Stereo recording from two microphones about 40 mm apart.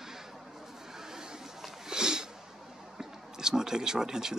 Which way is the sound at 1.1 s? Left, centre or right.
Centre.